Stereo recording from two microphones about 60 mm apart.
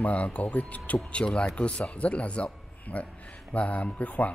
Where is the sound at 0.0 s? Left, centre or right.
Left.